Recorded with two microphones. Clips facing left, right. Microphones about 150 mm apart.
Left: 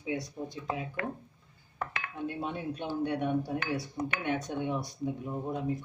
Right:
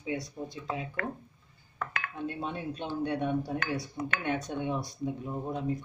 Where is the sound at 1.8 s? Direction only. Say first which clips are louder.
Even; 10° left (ahead or behind).